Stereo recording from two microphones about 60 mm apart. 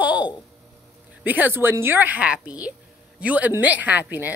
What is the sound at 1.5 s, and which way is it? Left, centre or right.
A woman's voice, right.